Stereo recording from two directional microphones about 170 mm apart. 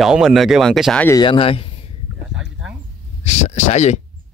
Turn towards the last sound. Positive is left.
turn(degrees=40)  # may be behind; listen again after turning